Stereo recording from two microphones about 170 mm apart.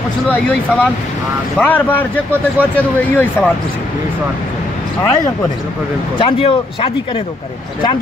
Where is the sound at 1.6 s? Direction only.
10° left (ahead or behind).